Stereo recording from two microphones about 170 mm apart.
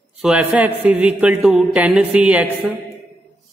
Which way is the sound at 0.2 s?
5° right (ahead or behind).